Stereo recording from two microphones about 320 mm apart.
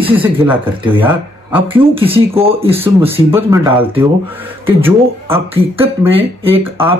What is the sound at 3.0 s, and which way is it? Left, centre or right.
Speech, centre.